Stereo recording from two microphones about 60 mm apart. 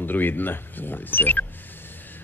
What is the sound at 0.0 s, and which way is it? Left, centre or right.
Speech, left.